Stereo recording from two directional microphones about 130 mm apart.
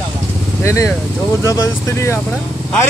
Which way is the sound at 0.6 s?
20° left (ahead or behind).